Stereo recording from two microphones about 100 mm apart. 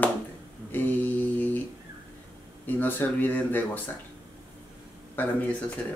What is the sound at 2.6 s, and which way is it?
Speech, 20° left (ahead or behind).